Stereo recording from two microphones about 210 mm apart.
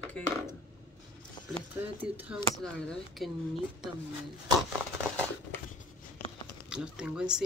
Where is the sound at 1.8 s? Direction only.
10° right (ahead or behind).